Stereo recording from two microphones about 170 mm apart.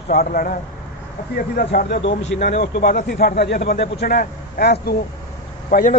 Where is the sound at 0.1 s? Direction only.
60° left (ahead or behind).